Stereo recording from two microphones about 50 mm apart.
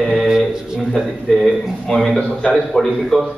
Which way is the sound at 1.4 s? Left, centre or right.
Centre.